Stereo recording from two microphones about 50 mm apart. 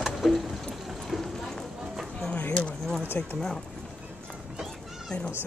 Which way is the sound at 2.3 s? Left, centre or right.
Left.